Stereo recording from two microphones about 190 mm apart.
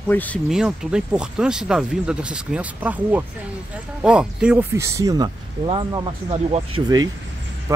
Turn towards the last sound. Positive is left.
turn(degrees=-20)  # may be behind; listen again after turning